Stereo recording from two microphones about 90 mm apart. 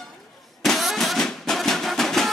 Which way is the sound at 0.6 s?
Centre (ahead or behind).